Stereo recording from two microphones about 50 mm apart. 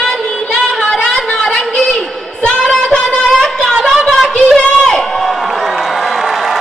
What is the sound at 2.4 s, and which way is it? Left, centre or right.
Child singing, centre.